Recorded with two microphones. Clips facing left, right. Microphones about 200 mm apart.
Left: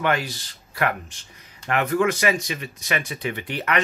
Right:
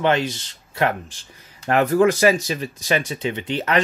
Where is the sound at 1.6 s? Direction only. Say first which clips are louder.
Right 5 dB; 35° right (ahead or behind).